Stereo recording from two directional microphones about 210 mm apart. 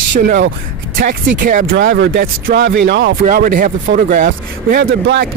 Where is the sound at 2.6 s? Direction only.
60° right (ahead or behind).